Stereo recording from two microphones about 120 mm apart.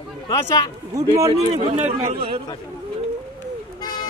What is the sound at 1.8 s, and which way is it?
Speech, 80° right.